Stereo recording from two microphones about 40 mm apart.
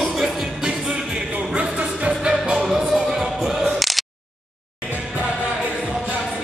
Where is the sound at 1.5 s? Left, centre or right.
Right.